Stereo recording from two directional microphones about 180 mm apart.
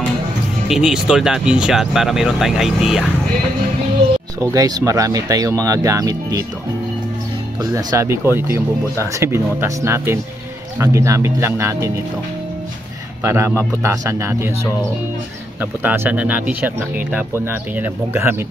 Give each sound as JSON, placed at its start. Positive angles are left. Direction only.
{"t": 0.7, "sound": "speech", "side_deg": -5}
{"t": 4.5, "sound": "speech", "side_deg": -20}
{"t": 7.7, "sound": "speech", "side_deg": -15}
{"t": 13.2, "sound": "speech", "side_deg": -15}